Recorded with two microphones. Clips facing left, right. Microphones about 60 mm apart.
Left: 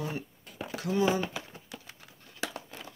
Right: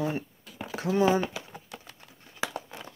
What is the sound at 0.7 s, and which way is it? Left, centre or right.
Speech, right.